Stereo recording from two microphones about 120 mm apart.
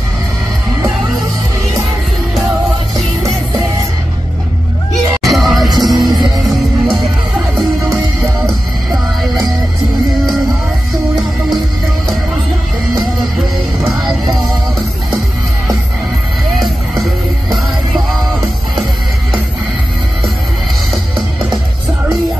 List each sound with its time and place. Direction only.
5.2 s music: centre (ahead or behind)
5.7 s music: 35° right (ahead or behind)